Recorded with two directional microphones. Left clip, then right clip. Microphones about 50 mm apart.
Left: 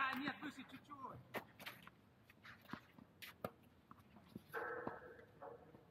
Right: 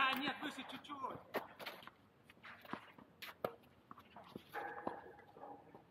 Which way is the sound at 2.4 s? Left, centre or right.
Left.